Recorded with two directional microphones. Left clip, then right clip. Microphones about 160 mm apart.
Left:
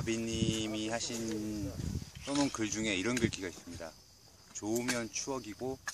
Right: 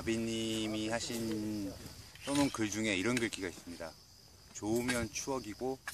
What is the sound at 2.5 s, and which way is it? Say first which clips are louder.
Speech: even; 15° right (ahead or behind).